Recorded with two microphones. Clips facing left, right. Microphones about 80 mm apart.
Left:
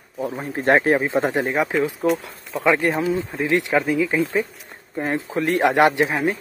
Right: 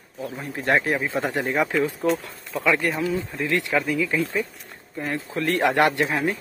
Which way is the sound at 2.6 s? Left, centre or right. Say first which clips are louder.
Left 4 dB; left.